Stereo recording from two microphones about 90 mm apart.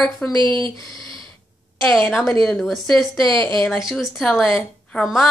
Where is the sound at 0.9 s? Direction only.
60° right (ahead or behind).